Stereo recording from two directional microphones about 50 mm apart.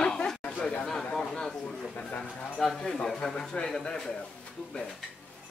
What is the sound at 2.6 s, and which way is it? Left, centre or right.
Speech, centre.